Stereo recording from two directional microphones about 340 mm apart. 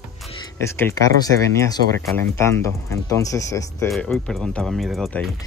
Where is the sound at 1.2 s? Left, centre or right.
Centre.